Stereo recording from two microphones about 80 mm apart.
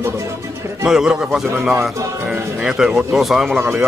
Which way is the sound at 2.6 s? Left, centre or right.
Centre.